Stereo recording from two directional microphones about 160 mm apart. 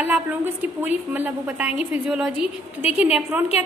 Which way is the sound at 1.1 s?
10° right (ahead or behind).